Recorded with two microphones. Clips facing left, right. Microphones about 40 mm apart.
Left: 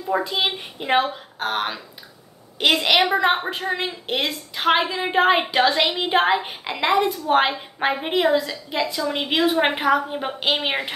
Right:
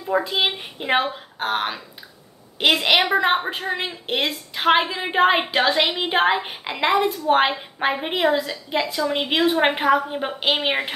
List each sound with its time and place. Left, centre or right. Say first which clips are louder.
0.1 s a woman's voice: right 1 dB; centre
5.7 s a woman's voice: right 1 dB; centre
5.9 s a woman's voice: even; centre